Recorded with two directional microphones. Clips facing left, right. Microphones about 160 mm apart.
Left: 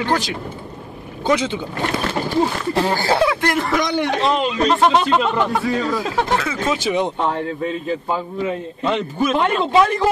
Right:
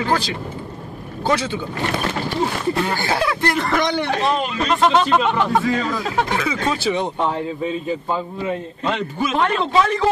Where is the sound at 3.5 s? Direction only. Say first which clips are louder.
Even; 10° left (ahead or behind).